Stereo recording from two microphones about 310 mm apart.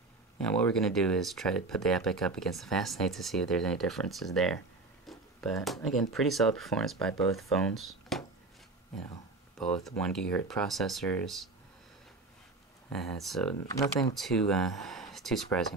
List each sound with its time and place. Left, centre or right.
0.4 s speech: centre
9.6 s speech: centre
12.9 s speech: centre